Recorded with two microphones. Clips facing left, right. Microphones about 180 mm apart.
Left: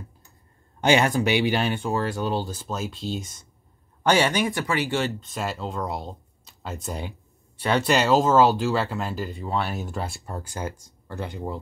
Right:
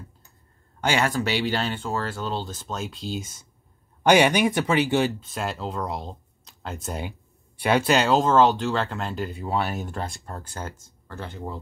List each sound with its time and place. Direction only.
0.7 s speech: 20° left (ahead or behind); by 3.4 s centre (ahead or behind)
4.0 s speech: 15° right (ahead or behind)
5.2 s speech: centre (ahead or behind)